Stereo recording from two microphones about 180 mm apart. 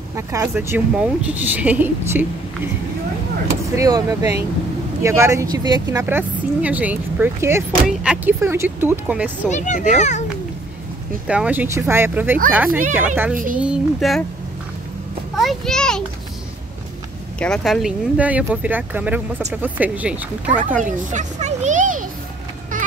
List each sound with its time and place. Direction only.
0.1 s speech: 15° right (ahead or behind)
3.7 s speech: 20° right (ahead or behind)
6.0 s speech: 10° right (ahead or behind)
9.5 s speech: 40° left (ahead or behind)
11.2 s a child's voice: 5° right (ahead or behind)
15.3 s a child's voice: centre (ahead or behind)
17.4 s speech: centre (ahead or behind)
21.1 s children playing: 40° right (ahead or behind)